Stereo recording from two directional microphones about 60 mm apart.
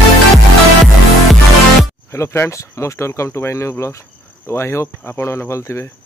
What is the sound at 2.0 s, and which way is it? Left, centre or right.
Speech, left.